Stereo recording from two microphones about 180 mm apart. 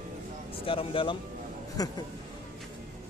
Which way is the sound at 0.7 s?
30° left (ahead or behind).